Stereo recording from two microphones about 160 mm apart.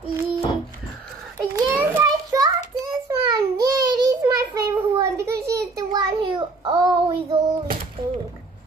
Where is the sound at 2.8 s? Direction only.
25° right (ahead or behind).